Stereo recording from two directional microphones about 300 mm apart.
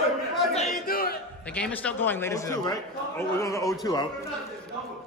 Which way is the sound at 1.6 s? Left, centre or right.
Centre.